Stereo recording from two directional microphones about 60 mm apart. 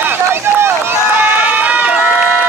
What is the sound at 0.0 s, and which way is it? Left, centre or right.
Run, right.